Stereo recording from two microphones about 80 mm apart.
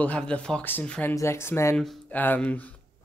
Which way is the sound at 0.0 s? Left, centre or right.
Centre.